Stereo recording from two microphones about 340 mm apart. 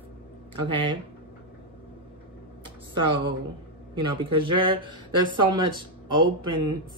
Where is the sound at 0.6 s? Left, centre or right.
Centre.